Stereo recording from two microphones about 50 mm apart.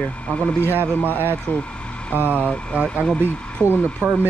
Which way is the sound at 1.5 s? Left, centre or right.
Left.